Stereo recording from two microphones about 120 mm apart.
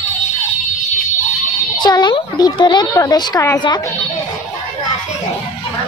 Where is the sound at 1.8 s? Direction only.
35° left (ahead or behind).